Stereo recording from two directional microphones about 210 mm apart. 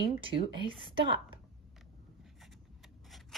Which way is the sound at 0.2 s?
25° right (ahead or behind).